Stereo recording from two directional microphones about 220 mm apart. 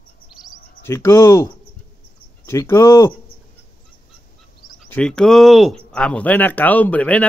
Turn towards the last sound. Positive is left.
turn(degrees=5)  # may be behind; listen again after turning